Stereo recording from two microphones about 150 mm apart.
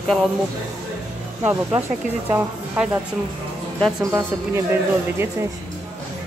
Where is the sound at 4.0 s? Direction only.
25° right (ahead or behind).